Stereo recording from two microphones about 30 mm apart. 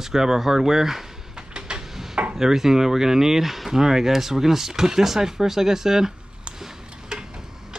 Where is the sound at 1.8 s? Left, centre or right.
Centre.